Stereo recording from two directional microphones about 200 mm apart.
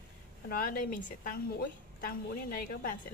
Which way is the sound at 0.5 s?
45° left (ahead or behind).